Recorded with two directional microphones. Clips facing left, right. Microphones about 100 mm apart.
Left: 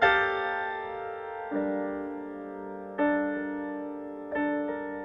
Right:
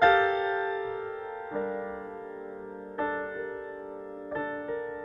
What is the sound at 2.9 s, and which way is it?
Music, 25° right (ahead or behind).